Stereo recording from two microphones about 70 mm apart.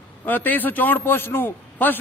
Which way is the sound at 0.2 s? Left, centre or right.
Left.